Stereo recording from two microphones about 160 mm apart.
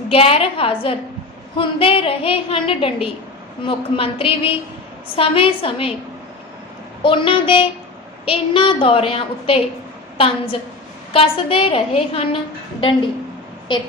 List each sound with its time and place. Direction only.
0.1 s a woman's voice: 35° left (ahead or behind)
7.0 s a woman's voice: 35° left (ahead or behind)
13.7 s a woman's voice: 30° left (ahead or behind)